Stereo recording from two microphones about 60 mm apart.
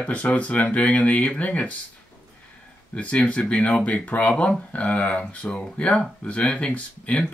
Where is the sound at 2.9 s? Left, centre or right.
Left.